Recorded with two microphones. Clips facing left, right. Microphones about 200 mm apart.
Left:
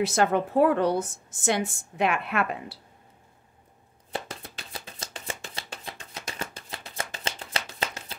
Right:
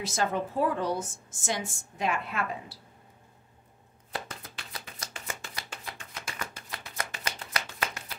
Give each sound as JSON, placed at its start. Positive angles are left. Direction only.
{"t": 0.0, "sound": "a woman's voice", "side_deg": 65}
{"t": 4.1, "sound": "chopping", "side_deg": 30}